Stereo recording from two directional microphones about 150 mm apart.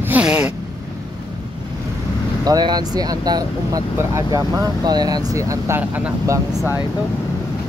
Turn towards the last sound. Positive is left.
turn(degrees=-15)  # may be behind; listen again after turning